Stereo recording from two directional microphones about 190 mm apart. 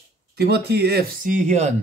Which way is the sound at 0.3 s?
60° right (ahead or behind).